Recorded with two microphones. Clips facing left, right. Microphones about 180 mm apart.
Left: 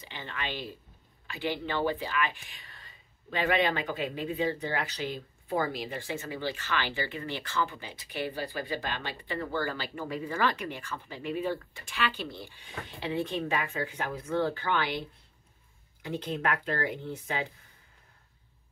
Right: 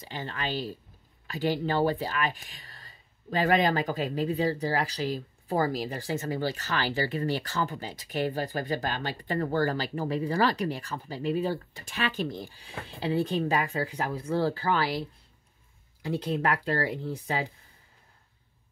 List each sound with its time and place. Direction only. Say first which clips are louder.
0.0 s speech: right 4 dB; 40° right (ahead or behind)